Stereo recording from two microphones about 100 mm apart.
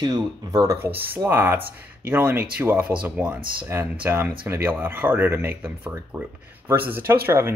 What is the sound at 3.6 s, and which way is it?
Speech, 20° right (ahead or behind).